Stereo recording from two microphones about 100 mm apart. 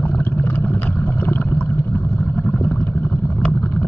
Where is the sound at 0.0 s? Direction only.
20° left (ahead or behind).